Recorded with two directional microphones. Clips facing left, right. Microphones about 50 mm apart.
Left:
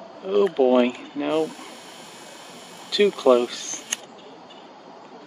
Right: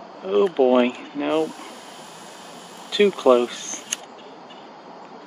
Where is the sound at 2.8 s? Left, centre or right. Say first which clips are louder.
Right 1 dB; right.